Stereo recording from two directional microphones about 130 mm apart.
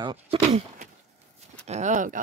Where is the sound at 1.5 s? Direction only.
60° right (ahead or behind); by 2.2 s 75° right (ahead or behind).